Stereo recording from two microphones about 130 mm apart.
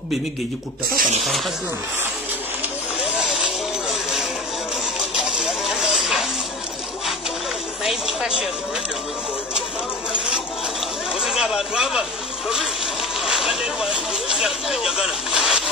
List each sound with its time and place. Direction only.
0.9 s speech: 80° right
3.0 s vehicle: 5° right (ahead or behind)
4.9 s music: 5° right (ahead or behind)
7.8 s a sound: 5° right (ahead or behind)
11.1 s speech: 5° right (ahead or behind)
12.4 s a sound: centre (ahead or behind)